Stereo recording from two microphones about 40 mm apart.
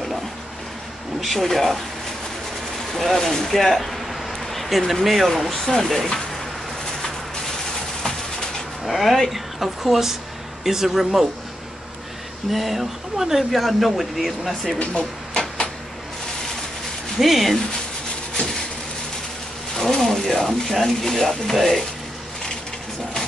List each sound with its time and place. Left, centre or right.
1.2 s speech: centre
2.9 s speech: centre
4.5 s a sound: centre
5.0 s speech: centre
5.9 s speech: centre
8.8 s speech: centre
12.4 s speech: centre
14.9 s a sound: left
17.2 s speech: centre
19.7 s a sound: centre
20.2 s speech: centre